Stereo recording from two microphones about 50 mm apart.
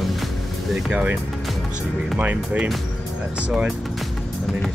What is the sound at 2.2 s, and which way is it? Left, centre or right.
Speech, right.